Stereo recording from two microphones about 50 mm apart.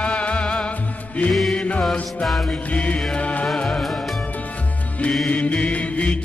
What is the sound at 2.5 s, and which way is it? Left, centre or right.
Music, left.